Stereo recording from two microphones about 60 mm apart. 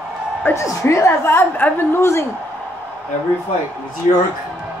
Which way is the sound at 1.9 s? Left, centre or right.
Left.